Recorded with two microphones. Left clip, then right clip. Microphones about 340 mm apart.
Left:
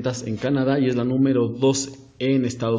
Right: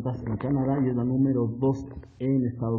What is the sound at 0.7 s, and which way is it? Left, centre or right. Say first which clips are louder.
A man's voice: left 6 dB; right.